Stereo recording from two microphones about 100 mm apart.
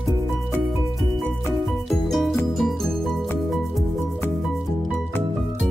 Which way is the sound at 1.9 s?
Centre (ahead or behind).